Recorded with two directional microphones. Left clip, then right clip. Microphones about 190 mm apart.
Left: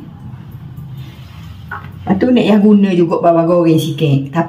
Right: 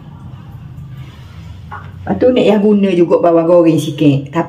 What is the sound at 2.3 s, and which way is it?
Speech, 15° right (ahead or behind).